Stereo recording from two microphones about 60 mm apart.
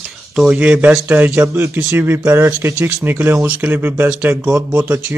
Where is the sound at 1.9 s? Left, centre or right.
Right.